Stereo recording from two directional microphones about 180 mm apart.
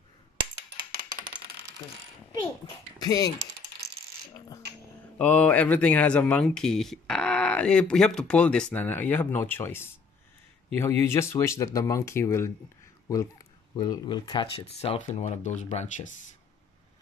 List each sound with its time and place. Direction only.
0.7 s music: 25° right (ahead or behind)
3.0 s speech: 20° left (ahead or behind)
5.2 s speech: 5° left (ahead or behind); by 16.2 s 40° left (ahead or behind)